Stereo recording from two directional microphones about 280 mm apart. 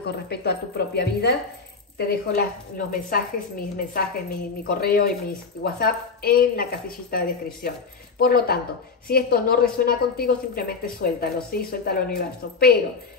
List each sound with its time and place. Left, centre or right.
0.0 s a woman's voice: left